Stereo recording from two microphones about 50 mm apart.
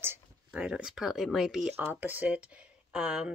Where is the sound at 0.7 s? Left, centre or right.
Centre.